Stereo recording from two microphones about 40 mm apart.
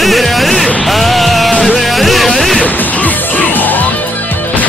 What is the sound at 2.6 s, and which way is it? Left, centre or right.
Music, left.